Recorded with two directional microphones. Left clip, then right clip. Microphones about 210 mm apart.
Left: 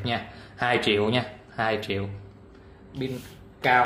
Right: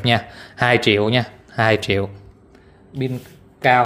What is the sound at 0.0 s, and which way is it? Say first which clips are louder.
Speech: right 11 dB; 45° right (ahead or behind).